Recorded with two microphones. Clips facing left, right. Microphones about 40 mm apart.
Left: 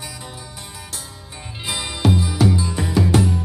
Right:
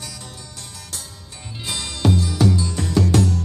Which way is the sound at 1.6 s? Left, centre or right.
Centre.